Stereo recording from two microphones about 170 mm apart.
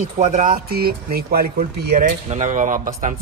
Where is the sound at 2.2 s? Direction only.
45° right (ahead or behind).